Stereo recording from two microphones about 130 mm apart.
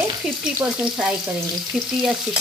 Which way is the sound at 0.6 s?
5° right (ahead or behind).